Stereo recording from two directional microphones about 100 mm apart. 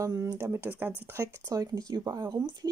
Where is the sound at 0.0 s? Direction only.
40° right (ahead or behind); by 1.2 s 20° right (ahead or behind).